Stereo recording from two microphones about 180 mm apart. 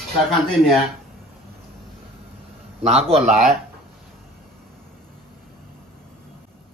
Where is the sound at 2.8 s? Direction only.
35° right (ahead or behind).